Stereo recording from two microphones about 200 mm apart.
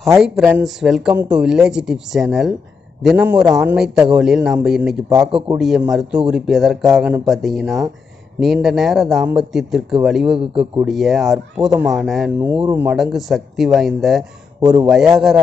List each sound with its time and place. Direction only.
0.2 s a man's voice: 5° right (ahead or behind)
12.4 s speech: 10° right (ahead or behind)
14.6 s a man's voice: 20° right (ahead or behind)